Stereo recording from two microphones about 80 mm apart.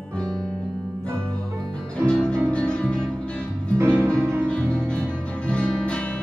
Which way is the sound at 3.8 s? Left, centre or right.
Right.